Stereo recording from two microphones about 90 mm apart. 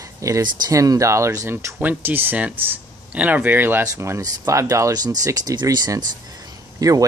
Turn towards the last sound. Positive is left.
turn(degrees=-40)  # may be behind; listen again after turning